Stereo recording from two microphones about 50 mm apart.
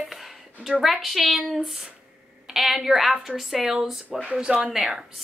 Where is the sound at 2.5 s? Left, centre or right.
Centre.